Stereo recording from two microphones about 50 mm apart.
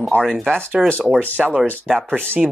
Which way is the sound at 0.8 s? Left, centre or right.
Centre.